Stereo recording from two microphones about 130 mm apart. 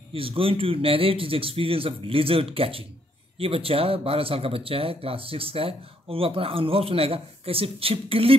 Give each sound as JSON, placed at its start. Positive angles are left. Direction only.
{"t": 0.1, "sound": "speech", "side_deg": -45}